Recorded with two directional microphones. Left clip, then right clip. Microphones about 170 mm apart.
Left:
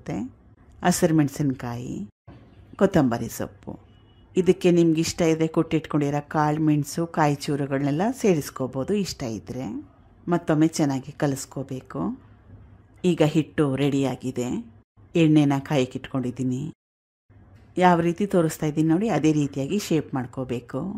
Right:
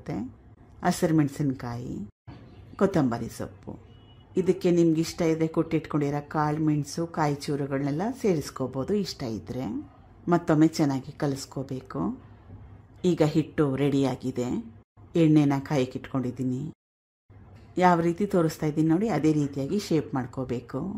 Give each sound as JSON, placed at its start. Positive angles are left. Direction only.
{"t": 0.0, "sound": "a woman's voice", "side_deg": 15}
{"t": 17.7, "sound": "speech", "side_deg": 15}